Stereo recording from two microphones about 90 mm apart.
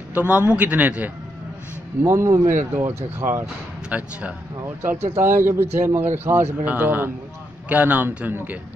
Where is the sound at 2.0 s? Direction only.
30° right (ahead or behind).